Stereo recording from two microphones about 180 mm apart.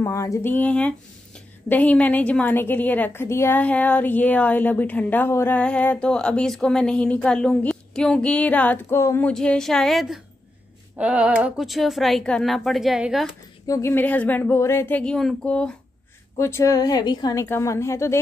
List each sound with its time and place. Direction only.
0.0 s speech: 15° left (ahead or behind)
9.3 s speech: 5° left (ahead or behind)
13.7 s speech: 15° left (ahead or behind)